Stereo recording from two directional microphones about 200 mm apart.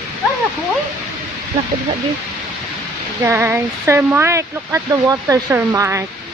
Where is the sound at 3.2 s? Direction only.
10° right (ahead or behind).